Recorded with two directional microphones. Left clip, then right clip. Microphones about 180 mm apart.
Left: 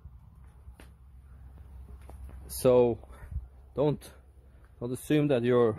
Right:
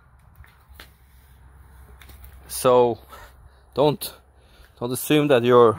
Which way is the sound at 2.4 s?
5° left (ahead or behind).